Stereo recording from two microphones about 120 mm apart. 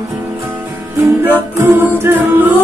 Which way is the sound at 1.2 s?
20° right (ahead or behind).